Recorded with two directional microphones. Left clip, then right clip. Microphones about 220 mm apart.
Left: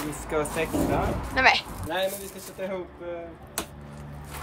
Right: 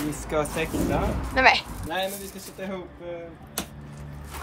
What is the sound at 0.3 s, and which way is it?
Speech, 10° right (ahead or behind).